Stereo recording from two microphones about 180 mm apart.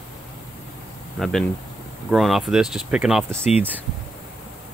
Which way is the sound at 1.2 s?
Centre (ahead or behind).